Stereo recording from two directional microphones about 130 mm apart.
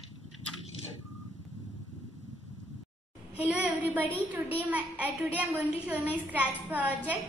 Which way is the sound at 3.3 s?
10° right (ahead or behind).